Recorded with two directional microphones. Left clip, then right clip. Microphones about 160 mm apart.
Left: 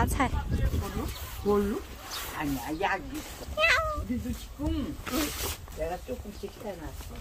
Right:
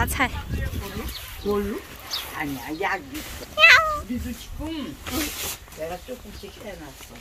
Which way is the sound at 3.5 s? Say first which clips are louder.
Right 11 dB; 5° left (ahead or behind).